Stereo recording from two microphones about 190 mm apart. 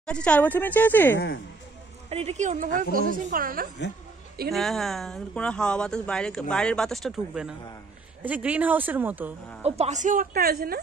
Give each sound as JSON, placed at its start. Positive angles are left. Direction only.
{"t": 0.0, "sound": "speech", "side_deg": 5}
{"t": 1.1, "sound": "speech", "side_deg": 60}
{"t": 2.0, "sound": "a woman's voice", "side_deg": -35}
{"t": 4.5, "sound": "speech", "side_deg": 0}
{"t": 9.6, "sound": "a woman's voice", "side_deg": -35}